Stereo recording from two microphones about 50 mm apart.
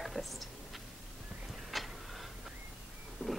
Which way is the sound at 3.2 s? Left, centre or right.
Right.